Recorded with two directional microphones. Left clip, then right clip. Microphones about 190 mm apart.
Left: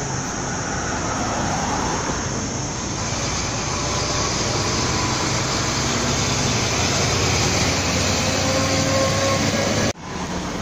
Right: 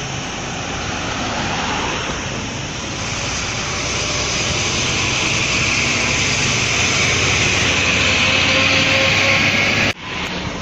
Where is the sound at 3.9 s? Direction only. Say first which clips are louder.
Right 3 dB; 45° left (ahead or behind).